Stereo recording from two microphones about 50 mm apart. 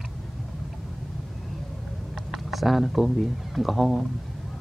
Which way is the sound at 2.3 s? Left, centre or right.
Centre.